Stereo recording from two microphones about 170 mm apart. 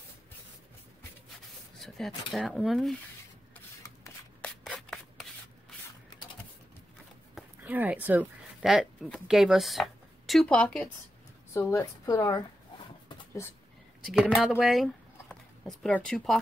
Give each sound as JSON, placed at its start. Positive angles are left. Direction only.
{"t": 1.8, "sound": "speech", "side_deg": 0}
{"t": 4.4, "sound": "rub", "side_deg": 5}
{"t": 7.3, "sound": "speech", "side_deg": -10}
{"t": 11.5, "sound": "a woman's voice", "side_deg": 15}
{"t": 14.4, "sound": "speech", "side_deg": 0}